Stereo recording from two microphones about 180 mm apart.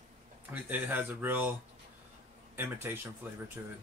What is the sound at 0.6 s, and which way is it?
Speech, 10° right (ahead or behind).